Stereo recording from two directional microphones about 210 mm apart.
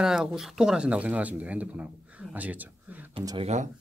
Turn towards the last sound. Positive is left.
turn(degrees=-15)  # may be behind; listen again after turning